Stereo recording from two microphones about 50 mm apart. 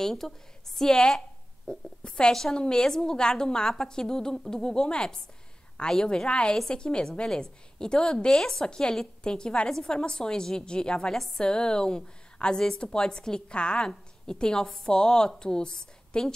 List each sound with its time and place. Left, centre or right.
0.0 s a woman's voice: centre